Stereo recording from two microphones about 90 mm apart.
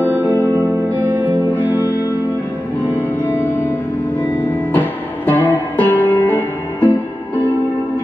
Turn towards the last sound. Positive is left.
turn(degrees=20)  # may be behind; listen again after turning